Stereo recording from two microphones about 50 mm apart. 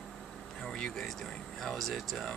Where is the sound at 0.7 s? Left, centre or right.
Centre.